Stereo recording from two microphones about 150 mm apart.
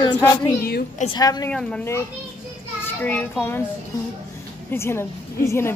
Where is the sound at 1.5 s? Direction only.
5° left (ahead or behind).